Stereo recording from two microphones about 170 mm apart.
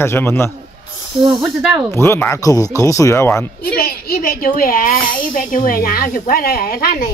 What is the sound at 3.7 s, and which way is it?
A woman's voice, 65° left (ahead or behind).